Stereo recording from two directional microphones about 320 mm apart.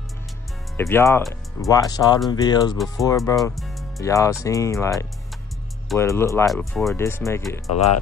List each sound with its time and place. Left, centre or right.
0.7 s speech: centre
3.3 s speech: centre
7.7 s speech: left